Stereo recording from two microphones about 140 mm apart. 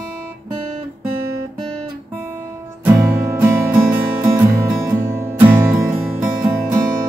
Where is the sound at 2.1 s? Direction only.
15° right (ahead or behind).